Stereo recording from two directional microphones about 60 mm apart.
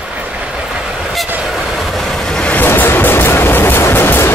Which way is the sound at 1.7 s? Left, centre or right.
Centre.